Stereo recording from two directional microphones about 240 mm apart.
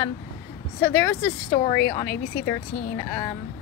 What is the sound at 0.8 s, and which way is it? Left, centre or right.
Speech, centre.